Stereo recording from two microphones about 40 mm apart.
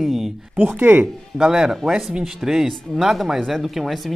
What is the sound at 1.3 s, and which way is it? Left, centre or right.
Speech, centre.